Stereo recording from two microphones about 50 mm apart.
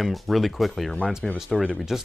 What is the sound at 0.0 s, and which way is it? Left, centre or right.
Speech, centre.